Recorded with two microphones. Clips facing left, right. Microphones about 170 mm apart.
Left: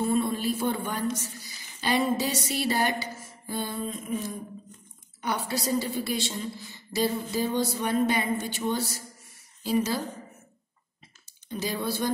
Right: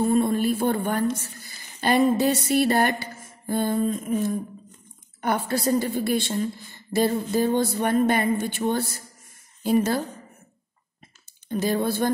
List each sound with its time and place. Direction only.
0.0 s a woman's voice: 50° right (ahead or behind)
11.4 s speech: 55° right (ahead or behind)